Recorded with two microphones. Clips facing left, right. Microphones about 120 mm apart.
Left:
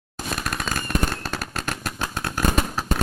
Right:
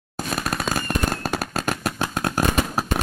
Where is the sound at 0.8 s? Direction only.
40° right (ahead or behind).